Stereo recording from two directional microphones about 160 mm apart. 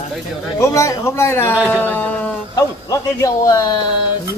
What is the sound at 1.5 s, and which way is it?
Speech, 5° right (ahead or behind).